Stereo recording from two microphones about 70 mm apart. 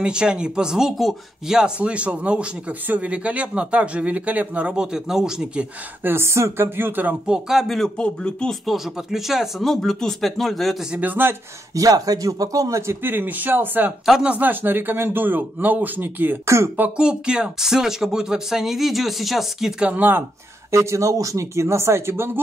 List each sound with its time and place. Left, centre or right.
0.0 s speech: centre
1.6 s speech: centre
6.0 s speech: right
7.2 s speech: centre
8.0 s speech: centre
8.5 s speech: centre
11.0 s speech: right
11.7 s speech: right
13.0 s speech: right
16.4 s speech: right
16.7 s speech: right
17.0 s speech: centre
19.8 s speech: right
20.7 s speech: right